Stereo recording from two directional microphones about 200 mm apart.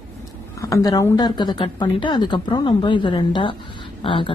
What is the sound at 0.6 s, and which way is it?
Speech, 15° left (ahead or behind).